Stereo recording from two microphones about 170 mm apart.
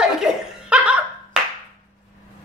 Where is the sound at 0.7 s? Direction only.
5° right (ahead or behind).